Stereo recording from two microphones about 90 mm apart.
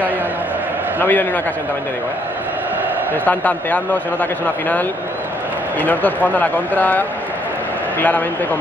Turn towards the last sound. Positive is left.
turn(degrees=20)  # may be behind; listen again after turning